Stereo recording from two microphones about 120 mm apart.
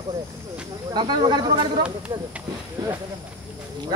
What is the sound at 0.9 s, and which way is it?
Speech, 40° right (ahead or behind).